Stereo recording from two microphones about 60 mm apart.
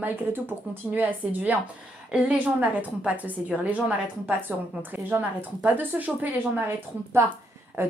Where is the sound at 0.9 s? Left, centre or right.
Right.